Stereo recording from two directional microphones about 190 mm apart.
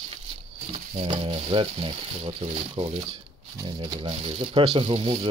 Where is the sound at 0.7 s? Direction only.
30° right (ahead or behind).